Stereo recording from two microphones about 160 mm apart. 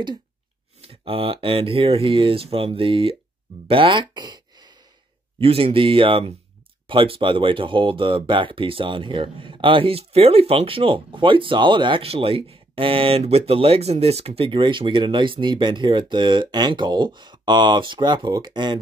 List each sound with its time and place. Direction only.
0.7 s speech: 35° right (ahead or behind)